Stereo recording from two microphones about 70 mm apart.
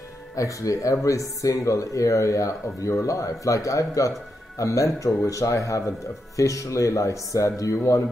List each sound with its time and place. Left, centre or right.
0.4 s speech: left